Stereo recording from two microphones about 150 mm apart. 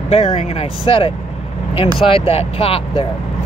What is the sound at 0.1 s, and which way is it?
Speech, 40° left (ahead or behind).